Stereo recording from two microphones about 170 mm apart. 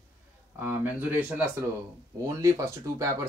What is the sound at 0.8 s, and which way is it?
Speech, 10° right (ahead or behind).